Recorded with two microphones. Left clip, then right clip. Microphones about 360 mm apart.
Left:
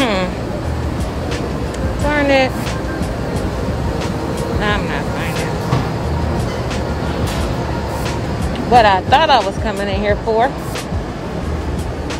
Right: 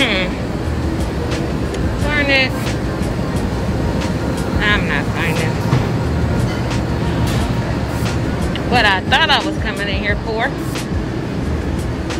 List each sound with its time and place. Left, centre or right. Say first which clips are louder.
2.0 s music: left 2 dB; centre
4.6 s vehicle: right 4 dB; centre
8.7 s speech: left 4 dB; centre